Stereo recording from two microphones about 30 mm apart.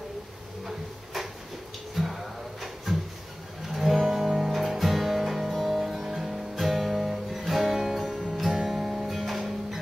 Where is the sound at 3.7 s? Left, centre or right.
Centre.